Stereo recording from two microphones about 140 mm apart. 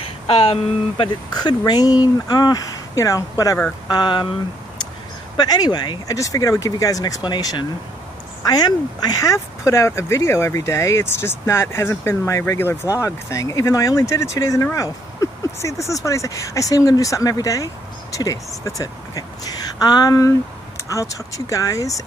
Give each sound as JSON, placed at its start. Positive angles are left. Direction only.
{"t": 0.3, "sound": "speech", "side_deg": 40}
{"t": 5.4, "sound": "a woman's voice", "side_deg": 30}